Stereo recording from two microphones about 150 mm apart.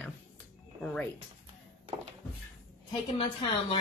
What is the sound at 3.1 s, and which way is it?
Speech, 35° left (ahead or behind).